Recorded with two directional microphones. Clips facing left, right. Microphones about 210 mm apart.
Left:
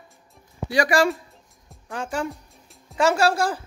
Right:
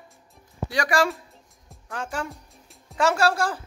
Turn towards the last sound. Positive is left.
turn(degrees=0)  # may be behind; listen again after turning